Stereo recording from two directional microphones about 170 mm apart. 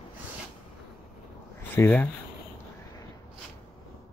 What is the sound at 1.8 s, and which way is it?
Speech, 15° left (ahead or behind).